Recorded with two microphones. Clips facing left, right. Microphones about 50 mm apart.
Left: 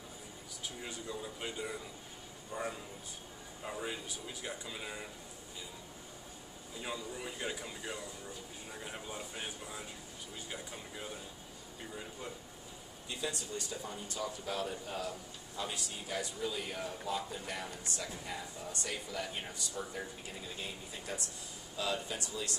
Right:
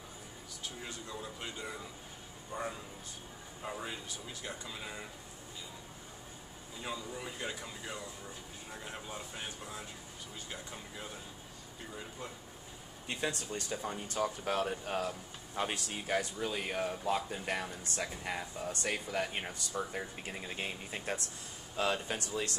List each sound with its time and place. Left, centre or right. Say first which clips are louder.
1.2 s speech: left 1 dB; centre
6.8 s speech: even; centre
13.1 s speech: right 3 dB; right